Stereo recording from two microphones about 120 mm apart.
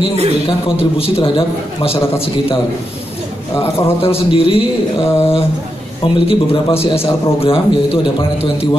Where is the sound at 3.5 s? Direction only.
55° left (ahead or behind).